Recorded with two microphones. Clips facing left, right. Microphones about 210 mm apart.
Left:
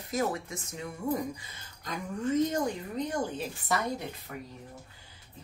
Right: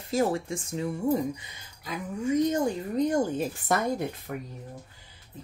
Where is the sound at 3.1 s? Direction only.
45° right (ahead or behind).